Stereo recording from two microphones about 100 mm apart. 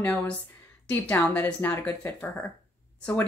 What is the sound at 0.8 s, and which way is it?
Speech, 20° left (ahead or behind).